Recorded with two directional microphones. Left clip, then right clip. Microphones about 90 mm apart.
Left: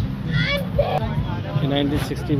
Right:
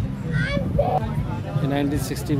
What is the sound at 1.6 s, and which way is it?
Speech, 35° right (ahead or behind).